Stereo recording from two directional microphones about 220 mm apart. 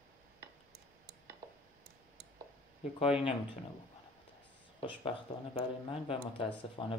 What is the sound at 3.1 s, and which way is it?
Speech, 5° right (ahead or behind).